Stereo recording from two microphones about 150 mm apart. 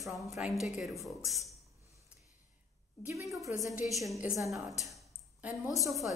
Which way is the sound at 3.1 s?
20° right (ahead or behind).